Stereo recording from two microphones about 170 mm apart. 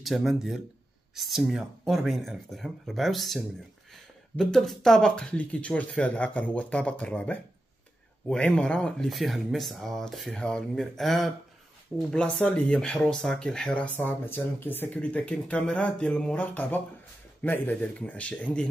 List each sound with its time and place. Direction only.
0.0 s speech: centre (ahead or behind)